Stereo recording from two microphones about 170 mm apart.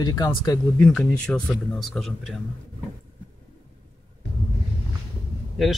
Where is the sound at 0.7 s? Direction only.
5° left (ahead or behind).